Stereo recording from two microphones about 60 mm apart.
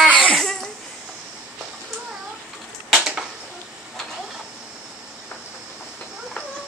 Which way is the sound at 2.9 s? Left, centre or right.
Centre.